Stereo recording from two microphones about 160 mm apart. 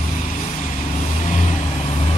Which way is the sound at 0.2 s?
50° left (ahead or behind).